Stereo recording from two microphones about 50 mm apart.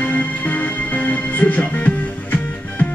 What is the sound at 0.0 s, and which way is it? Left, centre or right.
Music, left.